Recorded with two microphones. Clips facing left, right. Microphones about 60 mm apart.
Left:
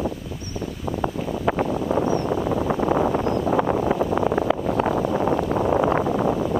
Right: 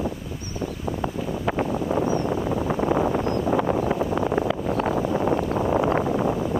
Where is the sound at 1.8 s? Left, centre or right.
Left.